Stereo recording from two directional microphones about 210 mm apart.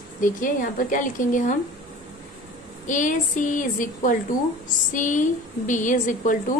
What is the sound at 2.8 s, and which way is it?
A woman's voice, 35° left (ahead or behind).